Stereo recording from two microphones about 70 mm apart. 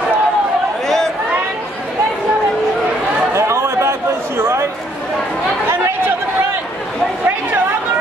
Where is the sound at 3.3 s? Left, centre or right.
Right.